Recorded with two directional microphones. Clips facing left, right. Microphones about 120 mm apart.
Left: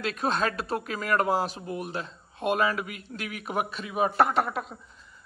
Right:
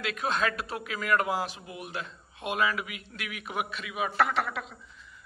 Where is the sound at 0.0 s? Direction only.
35° left (ahead or behind).